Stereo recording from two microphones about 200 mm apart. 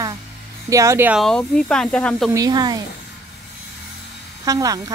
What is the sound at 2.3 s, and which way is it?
Speech, 20° right (ahead or behind).